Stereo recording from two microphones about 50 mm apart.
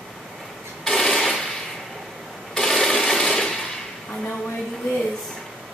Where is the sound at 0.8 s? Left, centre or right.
Centre.